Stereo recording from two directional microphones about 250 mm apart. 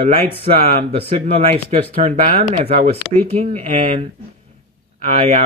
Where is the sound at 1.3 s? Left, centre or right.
Right.